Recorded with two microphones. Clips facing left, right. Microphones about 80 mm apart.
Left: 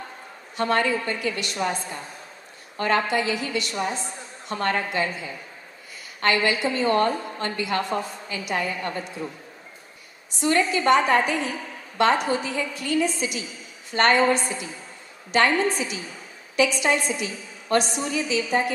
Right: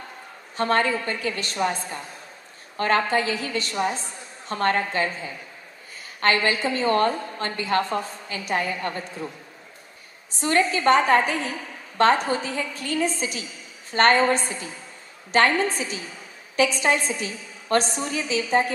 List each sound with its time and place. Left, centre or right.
0.6 s a woman's voice: right
2.8 s a woman's voice: right
10.4 s a woman's voice: right